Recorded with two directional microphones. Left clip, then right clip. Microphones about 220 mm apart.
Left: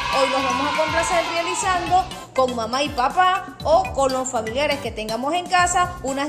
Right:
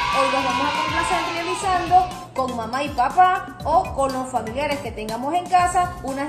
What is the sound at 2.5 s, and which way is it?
A woman's voice, 45° left (ahead or behind).